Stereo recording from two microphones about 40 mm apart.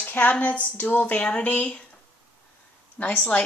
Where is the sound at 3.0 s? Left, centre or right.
Left.